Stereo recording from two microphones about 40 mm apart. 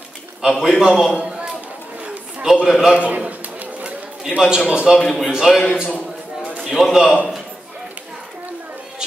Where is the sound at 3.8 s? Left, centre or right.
Right.